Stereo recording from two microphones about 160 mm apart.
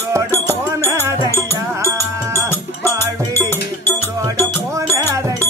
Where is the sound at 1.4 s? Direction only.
20° right (ahead or behind).